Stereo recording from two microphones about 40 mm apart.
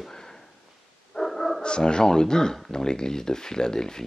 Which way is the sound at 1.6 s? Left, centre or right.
Left.